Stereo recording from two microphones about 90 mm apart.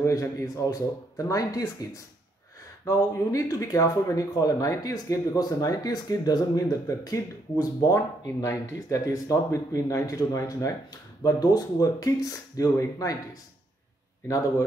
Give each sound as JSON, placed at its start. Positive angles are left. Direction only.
{"t": 0.0, "sound": "speech", "side_deg": 40}